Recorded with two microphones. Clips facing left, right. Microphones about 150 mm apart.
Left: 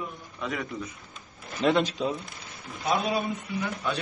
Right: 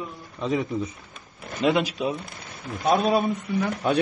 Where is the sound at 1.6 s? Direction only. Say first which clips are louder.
Right 1 dB; centre (ahead or behind).